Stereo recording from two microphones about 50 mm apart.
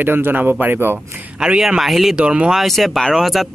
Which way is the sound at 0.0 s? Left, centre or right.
Right.